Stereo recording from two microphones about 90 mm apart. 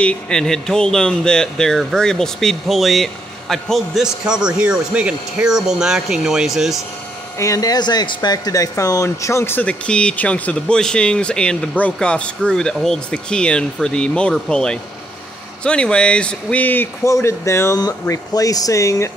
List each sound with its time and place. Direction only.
0.0 s speech: 10° left (ahead or behind)
7.3 s speech: 35° left (ahead or behind)
9.7 s speech: 10° left (ahead or behind)
17.0 s speech: 30° left (ahead or behind)
18.3 s speech: 40° left (ahead or behind)